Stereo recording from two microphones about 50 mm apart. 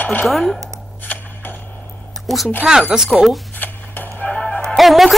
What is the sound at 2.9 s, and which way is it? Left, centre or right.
Speech, centre.